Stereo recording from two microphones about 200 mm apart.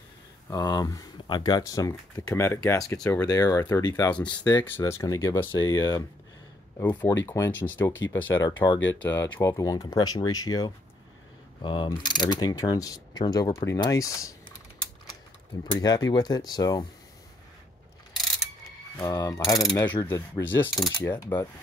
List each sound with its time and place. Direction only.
0.5 s speech: 20° left (ahead or behind)
15.6 s speech: 20° left (ahead or behind)
18.9 s speech: 15° left (ahead or behind)